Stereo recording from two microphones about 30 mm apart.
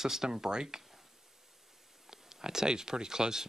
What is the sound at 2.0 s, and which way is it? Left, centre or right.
Speech, centre.